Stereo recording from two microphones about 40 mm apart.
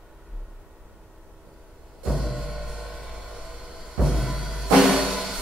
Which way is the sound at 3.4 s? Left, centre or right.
Centre.